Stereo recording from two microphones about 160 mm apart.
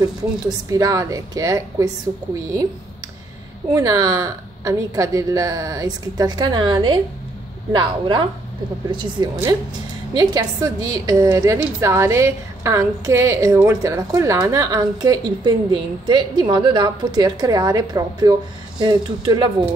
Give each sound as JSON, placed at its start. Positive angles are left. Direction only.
{"t": 0.0, "sound": "a woman's voice", "side_deg": -20}
{"t": 3.7, "sound": "a woman's voice", "side_deg": -20}